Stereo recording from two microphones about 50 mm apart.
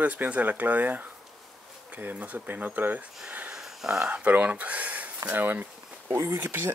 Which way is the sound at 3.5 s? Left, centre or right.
Centre.